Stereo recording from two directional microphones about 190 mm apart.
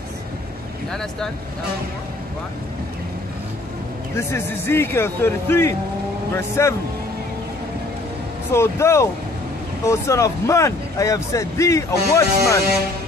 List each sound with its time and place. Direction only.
4.3 s speech: 10° left (ahead or behind)
8.5 s speech: 15° left (ahead or behind)